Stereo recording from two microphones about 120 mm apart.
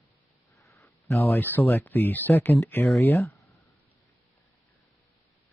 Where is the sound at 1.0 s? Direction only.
20° left (ahead or behind).